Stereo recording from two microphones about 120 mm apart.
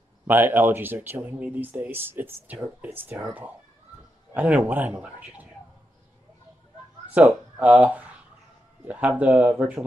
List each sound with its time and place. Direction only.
0.3 s speech: 15° right (ahead or behind)
4.3 s speech: 10° right (ahead or behind)
7.2 s speech: 10° right (ahead or behind)